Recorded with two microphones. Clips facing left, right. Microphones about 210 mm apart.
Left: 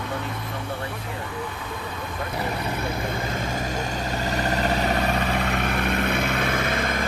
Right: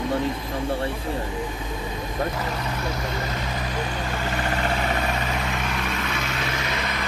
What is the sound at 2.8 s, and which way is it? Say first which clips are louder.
Vehicle: left 1 dB; 55° left (ahead or behind).